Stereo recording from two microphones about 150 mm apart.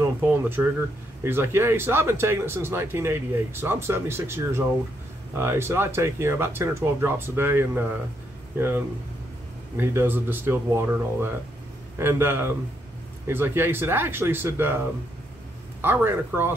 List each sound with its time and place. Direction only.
0.0 s speech: 15° right (ahead or behind)
15.8 s speech: 15° right (ahead or behind)